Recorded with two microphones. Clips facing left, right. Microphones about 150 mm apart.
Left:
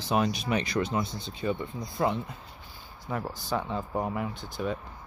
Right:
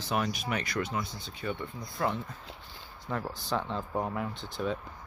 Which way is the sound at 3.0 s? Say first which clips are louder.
Left 1 dB; 5° left (ahead or behind).